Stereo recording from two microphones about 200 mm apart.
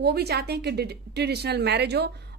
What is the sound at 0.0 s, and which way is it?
A woman's voice, 55° right (ahead or behind).